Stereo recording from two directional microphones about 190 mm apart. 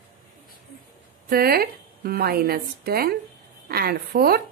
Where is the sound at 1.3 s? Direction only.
55° right (ahead or behind).